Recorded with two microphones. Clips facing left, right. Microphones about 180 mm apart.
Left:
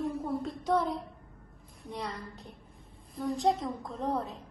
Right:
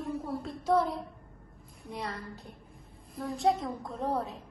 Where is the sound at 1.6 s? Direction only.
Centre (ahead or behind).